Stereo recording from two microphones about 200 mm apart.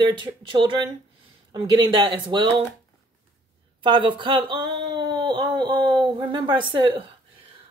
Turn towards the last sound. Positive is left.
turn(degrees=-25)  # may be behind; listen again after turning